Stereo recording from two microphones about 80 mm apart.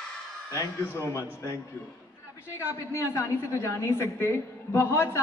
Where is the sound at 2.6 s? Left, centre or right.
Left.